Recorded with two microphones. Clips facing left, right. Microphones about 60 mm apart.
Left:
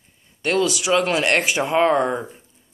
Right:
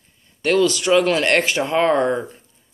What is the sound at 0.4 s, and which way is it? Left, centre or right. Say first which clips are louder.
Speech: right 3 dB; centre.